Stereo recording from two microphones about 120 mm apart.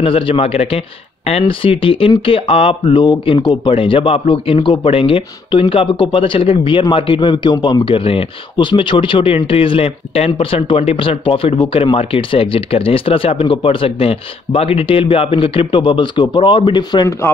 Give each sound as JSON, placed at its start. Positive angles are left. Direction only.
{"t": 0.0, "sound": "speech", "side_deg": 50}
{"t": 7.8, "sound": "speech", "side_deg": 50}